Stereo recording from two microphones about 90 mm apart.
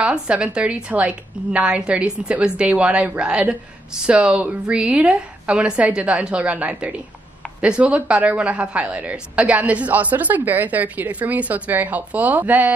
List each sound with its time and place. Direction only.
0.0 s a woman's voice: 15° right (ahead or behind)